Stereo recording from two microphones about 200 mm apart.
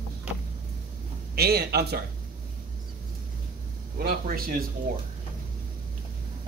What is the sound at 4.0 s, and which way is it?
Speech, 45° right (ahead or behind).